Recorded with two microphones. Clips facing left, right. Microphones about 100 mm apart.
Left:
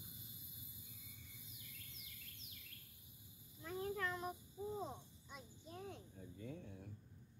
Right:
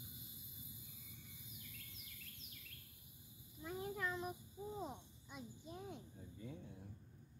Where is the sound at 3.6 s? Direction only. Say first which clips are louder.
Left 1 dB; 15° right (ahead or behind).